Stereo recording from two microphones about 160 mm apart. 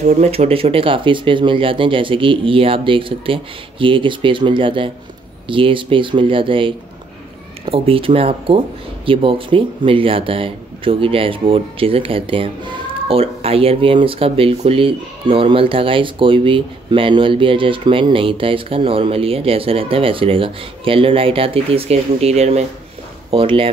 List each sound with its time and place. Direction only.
0.0 s speech: 40° right (ahead or behind)